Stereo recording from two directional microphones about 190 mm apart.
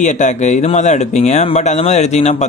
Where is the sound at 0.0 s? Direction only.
40° left (ahead or behind).